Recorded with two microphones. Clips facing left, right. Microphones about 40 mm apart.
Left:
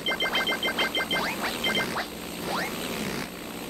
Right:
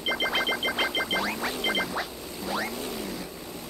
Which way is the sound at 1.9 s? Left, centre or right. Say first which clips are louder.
Left 1 dB; centre.